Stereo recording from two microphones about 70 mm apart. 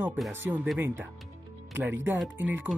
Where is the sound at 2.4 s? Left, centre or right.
Right.